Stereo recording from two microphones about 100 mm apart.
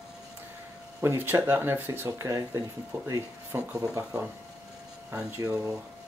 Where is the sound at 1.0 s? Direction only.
25° right (ahead or behind).